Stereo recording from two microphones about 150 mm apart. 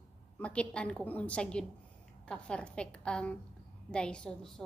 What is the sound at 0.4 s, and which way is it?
A woman's voice, 10° left (ahead or behind).